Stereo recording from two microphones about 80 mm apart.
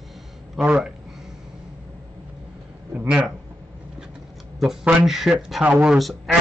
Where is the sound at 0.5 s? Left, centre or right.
Centre.